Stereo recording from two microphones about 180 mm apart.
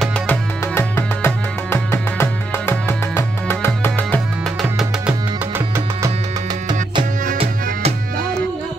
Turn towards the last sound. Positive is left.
turn(degrees=-35)  # may be behind; listen again after turning